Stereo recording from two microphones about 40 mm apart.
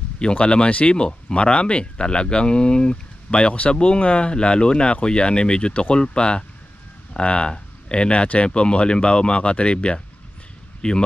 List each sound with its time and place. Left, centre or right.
0.2 s speech: left